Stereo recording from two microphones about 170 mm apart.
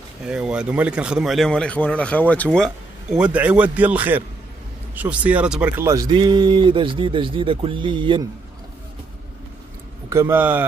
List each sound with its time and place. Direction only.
0.2 s speech: 5° right (ahead or behind); by 8.3 s 30° right (ahead or behind)
10.0 s speech: 15° right (ahead or behind)